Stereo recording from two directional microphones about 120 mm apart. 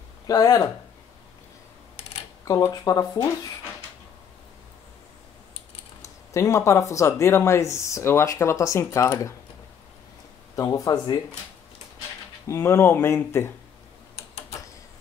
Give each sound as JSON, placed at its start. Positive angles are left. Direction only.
{"t": 0.3, "sound": "speech", "side_deg": 30}
{"t": 2.4, "sound": "speech", "side_deg": 30}
{"t": 6.0, "sound": "speech", "side_deg": 25}
{"t": 10.5, "sound": "speech", "side_deg": 30}
{"t": 12.4, "sound": "speech", "side_deg": 25}